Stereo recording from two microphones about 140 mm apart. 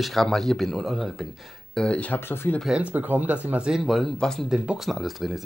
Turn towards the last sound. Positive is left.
turn(degrees=0)  # may be behind; listen again after turning